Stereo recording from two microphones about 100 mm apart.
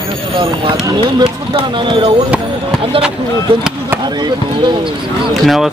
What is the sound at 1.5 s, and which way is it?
Speech, 55° right (ahead or behind).